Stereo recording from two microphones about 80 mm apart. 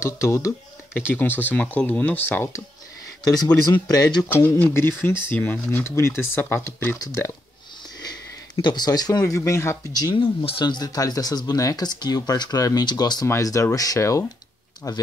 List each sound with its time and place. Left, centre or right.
0.0 s speech: left
0.9 s speech: left
3.9 s speech: left
4.3 s speech: left
8.5 s speech: left
9.4 s speech: left
10.1 s speech: left
13.4 s speech: left